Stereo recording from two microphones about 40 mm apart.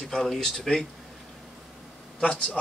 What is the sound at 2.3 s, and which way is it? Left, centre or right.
Speech, left.